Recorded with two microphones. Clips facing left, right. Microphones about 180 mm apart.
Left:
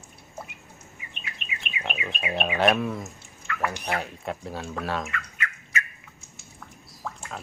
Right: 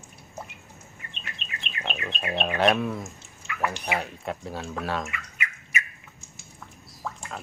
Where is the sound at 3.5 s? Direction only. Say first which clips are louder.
Left 2 dB; 15° right (ahead or behind).